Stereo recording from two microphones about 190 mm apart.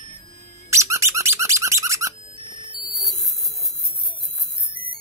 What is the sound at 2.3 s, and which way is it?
Music, 25° right (ahead or behind).